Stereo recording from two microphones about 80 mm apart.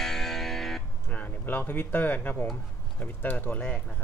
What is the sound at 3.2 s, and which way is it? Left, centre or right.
Speech, left.